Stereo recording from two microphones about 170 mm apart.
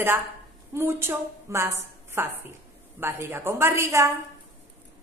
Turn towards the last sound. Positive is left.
turn(degrees=-15)  # may be behind; listen again after turning